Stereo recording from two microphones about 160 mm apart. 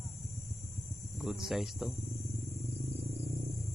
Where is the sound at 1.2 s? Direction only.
Centre (ahead or behind).